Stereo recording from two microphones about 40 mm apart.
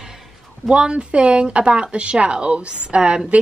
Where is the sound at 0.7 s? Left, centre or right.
Right.